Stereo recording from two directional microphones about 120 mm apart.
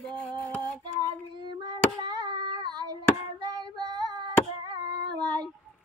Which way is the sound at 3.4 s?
35° right (ahead or behind).